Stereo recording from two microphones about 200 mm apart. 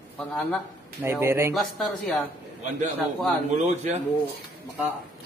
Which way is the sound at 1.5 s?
Centre (ahead or behind).